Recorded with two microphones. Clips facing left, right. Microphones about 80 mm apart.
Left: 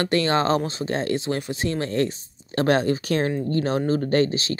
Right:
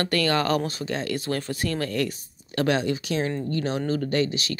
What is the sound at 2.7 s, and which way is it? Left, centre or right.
Speech, left.